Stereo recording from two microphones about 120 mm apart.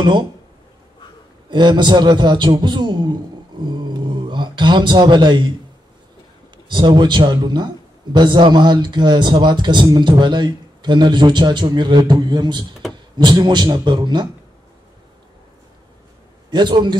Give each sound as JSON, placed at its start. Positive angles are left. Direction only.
{"t": 0.0, "sound": "a man's voice", "side_deg": -40}
{"t": 1.5, "sound": "a man's voice", "side_deg": -40}
{"t": 3.6, "sound": "a sound", "side_deg": -40}
{"t": 6.7, "sound": "a man's voice", "side_deg": -40}
{"t": 16.4, "sound": "a man's voice", "side_deg": -40}